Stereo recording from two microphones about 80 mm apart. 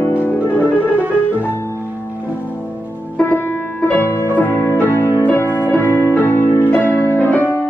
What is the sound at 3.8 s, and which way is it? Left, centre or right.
Music, left.